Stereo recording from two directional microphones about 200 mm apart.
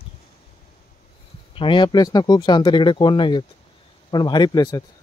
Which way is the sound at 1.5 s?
25° left (ahead or behind).